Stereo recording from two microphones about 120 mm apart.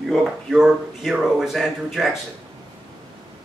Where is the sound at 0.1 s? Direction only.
Centre (ahead or behind).